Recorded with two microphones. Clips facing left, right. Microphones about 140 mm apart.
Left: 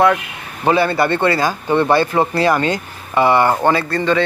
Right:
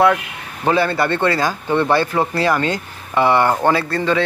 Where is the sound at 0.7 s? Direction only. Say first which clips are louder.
Left 2 dB; 15° left (ahead or behind).